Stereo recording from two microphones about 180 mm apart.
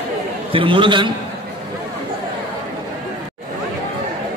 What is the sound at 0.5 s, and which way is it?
Speech, 30° right (ahead or behind).